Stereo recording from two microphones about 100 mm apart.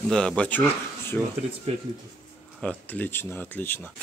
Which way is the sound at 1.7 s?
90° right.